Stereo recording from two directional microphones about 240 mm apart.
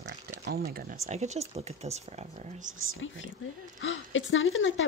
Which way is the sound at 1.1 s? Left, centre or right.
Right.